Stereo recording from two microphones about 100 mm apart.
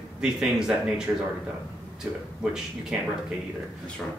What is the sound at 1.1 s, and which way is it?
Speech, 20° right (ahead or behind).